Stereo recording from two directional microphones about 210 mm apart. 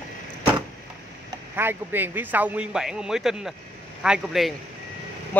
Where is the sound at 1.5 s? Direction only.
10° right (ahead or behind).